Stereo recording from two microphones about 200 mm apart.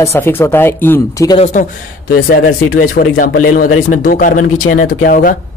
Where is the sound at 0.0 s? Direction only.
10° left (ahead or behind).